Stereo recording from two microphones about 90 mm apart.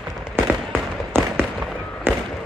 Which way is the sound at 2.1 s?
25° right (ahead or behind).